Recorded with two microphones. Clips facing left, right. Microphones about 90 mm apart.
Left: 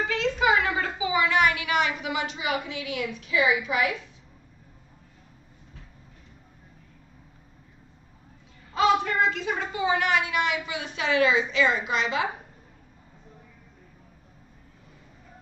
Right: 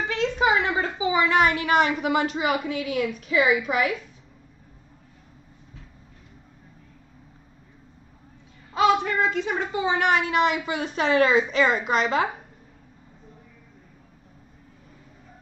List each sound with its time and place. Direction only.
0.1 s a woman's voice: 25° right (ahead or behind)
8.7 s a woman's voice: 25° right (ahead or behind); by 12.3 s 45° right (ahead or behind)